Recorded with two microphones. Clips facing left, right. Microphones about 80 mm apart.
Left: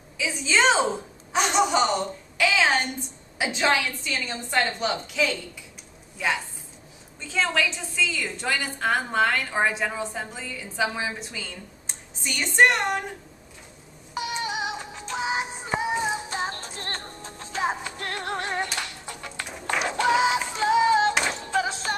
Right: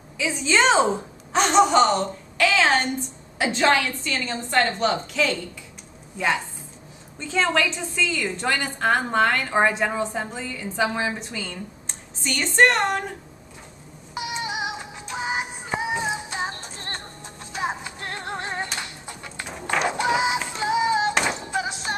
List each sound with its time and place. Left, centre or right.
0.2 s a woman's voice: centre
14.1 s music: right
19.9 s a sound: right
20.4 s synthetic singing: centre
21.2 s music: centre